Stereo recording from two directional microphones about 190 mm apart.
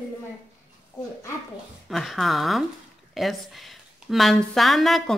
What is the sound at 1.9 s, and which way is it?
A woman's voice, centre (ahead or behind).